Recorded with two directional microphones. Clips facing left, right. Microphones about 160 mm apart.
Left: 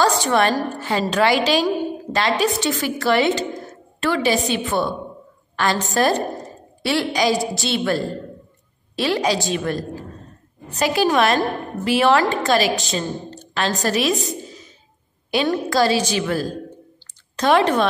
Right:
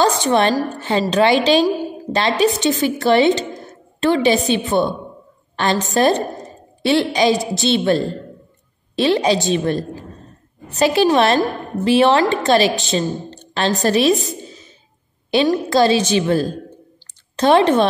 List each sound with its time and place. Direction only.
0.0 s a woman's voice: 20° right (ahead or behind)
15.5 s a woman's voice: 25° right (ahead or behind)